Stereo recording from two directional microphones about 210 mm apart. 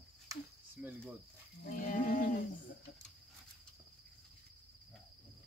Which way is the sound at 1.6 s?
40° left (ahead or behind).